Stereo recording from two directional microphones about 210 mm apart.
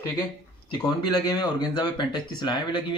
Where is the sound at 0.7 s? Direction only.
20° left (ahead or behind).